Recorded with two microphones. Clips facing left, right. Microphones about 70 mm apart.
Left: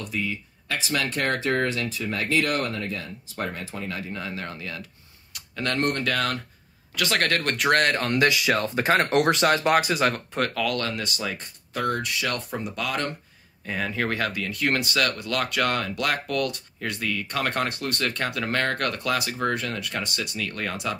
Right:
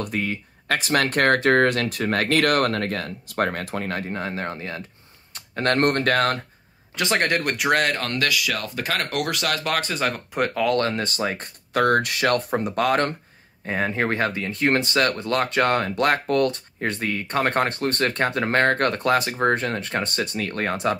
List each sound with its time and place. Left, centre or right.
0.0 s speech: right
5.3 s speech: right
7.0 s speech: right
7.5 s speech: centre
8.2 s speech: left; by 10.2 s centre
10.3 s speech: centre; by 11.4 s right
11.4 s speech: right
13.7 s speech: right